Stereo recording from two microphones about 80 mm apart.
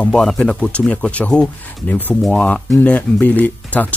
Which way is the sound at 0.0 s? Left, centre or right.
Centre.